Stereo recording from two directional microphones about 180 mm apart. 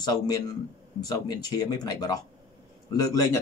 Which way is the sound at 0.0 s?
20° left (ahead or behind).